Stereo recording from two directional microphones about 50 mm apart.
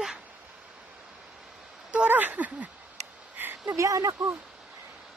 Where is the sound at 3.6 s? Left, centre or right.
Right.